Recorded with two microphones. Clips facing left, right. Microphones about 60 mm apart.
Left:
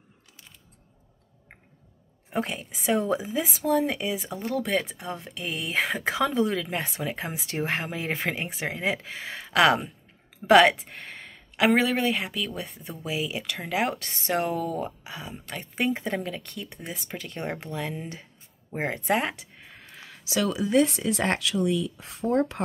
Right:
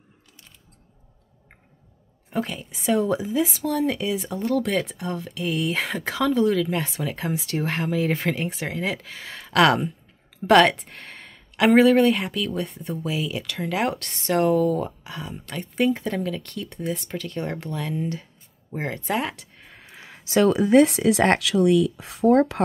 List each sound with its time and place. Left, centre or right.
2.3 s speech: centre
2.7 s speech: centre
6.1 s speech: centre
13.1 s speech: centre
19.3 s a sound: centre
19.9 s a sound: right
20.2 s speech: right